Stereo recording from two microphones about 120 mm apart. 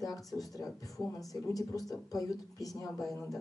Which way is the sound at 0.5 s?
30° left (ahead or behind).